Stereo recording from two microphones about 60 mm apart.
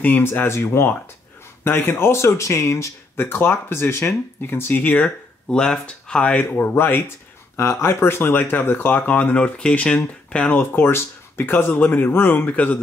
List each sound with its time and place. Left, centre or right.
0.0 s speech: left
3.2 s speech: left
4.8 s speech: centre
6.6 s speech: left; by 9.9 s centre
10.5 s speech: left